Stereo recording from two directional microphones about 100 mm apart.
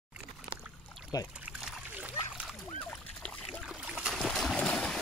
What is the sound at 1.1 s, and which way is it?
Speech, 40° left (ahead or behind).